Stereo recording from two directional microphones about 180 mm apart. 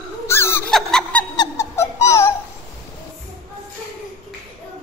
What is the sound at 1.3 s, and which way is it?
Music, 20° left (ahead or behind).